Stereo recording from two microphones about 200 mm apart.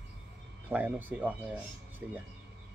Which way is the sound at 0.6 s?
10° right (ahead or behind).